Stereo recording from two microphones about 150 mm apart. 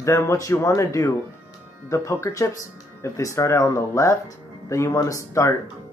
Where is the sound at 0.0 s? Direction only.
20° left (ahead or behind).